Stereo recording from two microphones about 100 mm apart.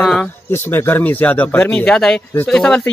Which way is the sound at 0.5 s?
20° left (ahead or behind).